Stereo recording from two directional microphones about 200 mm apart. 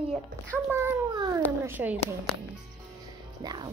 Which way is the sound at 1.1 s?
20° right (ahead or behind).